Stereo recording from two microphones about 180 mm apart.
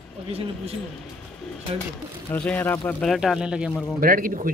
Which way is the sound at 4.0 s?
50° right (ahead or behind).